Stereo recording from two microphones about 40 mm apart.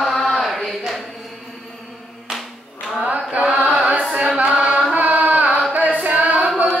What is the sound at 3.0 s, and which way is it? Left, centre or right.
Chant, right.